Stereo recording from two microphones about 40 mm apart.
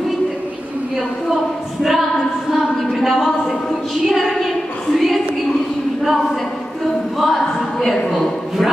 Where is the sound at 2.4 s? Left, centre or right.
Centre.